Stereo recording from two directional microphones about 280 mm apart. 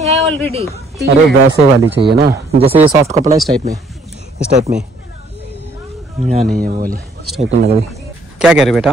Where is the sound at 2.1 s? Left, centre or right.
Right.